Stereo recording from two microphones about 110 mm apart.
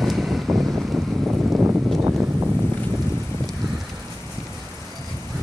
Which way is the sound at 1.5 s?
15° right (ahead or behind).